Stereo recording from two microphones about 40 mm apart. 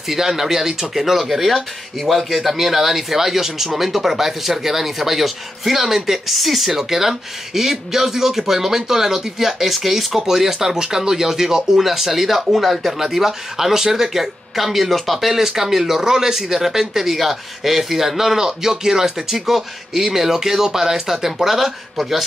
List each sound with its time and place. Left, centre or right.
0.1 s speech: centre